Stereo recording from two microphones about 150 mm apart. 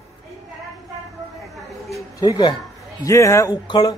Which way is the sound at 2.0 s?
25° left (ahead or behind).